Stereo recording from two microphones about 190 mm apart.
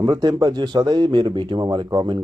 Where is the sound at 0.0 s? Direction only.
20° right (ahead or behind).